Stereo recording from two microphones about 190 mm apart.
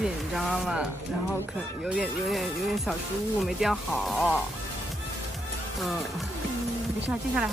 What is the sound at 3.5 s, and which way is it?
Speech, centre (ahead or behind).